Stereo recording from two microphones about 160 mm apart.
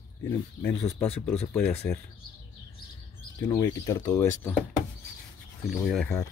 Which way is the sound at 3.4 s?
20° left (ahead or behind).